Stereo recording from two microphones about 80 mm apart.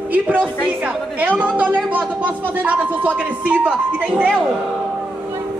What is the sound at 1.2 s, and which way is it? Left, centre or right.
A woman's voice, centre.